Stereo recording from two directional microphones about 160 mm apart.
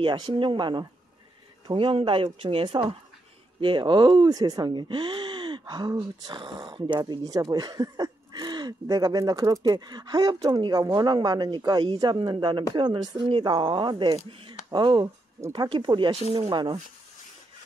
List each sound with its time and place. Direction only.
0.0 s speech: 30° right (ahead or behind)